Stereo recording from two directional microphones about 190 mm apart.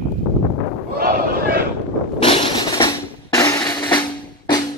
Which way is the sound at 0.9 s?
55° right (ahead or behind).